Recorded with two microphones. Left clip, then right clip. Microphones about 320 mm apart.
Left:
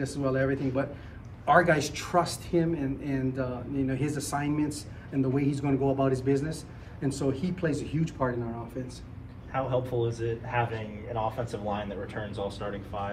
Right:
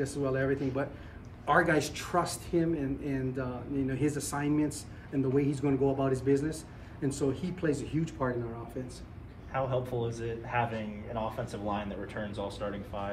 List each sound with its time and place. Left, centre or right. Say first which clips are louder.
0.0 s a woman's voice: left 3 dB; centre
9.5 s speech: left 3 dB; left
11.7 s speech: left 2 dB; left